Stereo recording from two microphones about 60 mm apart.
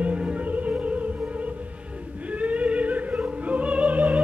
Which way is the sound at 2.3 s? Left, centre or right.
Right.